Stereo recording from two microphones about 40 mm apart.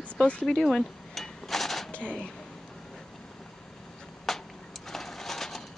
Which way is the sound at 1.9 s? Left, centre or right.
Left.